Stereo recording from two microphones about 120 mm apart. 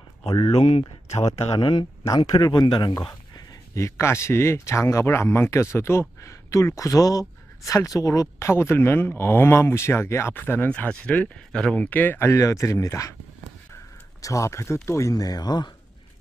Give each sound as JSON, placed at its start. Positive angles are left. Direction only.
{"t": 0.2, "sound": "speech", "side_deg": 55}
{"t": 1.6, "sound": "speech", "side_deg": 35}
{"t": 14.2, "sound": "speech", "side_deg": 25}